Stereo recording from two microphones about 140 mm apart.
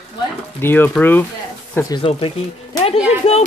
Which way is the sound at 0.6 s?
15° left (ahead or behind).